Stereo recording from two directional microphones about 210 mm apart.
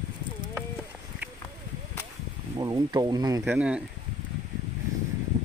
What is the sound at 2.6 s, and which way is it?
Speech, 20° right (ahead or behind).